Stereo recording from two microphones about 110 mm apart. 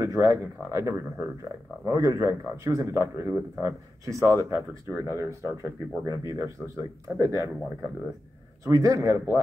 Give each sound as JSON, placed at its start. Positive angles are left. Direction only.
{"t": 0.0, "sound": "speech", "side_deg": -30}
{"t": 8.6, "sound": "speech", "side_deg": -30}